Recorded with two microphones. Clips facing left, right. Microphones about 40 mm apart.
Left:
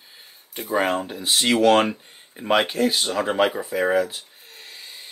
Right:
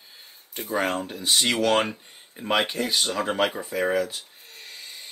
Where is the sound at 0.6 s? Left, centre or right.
Centre.